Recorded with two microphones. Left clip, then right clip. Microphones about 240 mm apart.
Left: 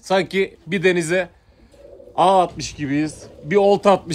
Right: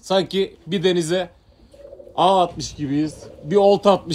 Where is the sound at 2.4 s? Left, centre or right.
Centre.